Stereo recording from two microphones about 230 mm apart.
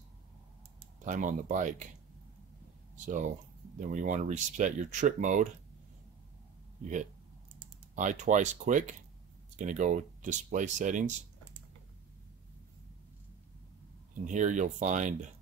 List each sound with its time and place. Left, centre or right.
0.7 s speech: right
3.1 s speech: right
7.9 s speech: right
14.2 s speech: right